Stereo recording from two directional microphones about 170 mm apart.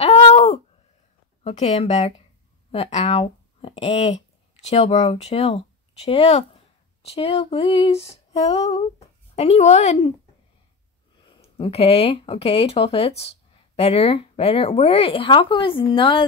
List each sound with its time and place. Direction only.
0.0 s a sound: 35° left (ahead or behind)
1.4 s speech: 40° left (ahead or behind)
11.5 s speech: 35° left (ahead or behind)